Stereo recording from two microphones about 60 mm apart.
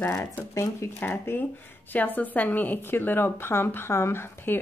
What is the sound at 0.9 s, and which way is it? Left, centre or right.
A woman's voice, left.